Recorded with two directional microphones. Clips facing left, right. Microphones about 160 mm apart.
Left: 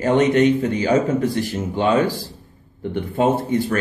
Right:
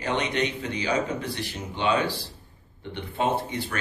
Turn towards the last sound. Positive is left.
turn(degrees=45)  # may be behind; listen again after turning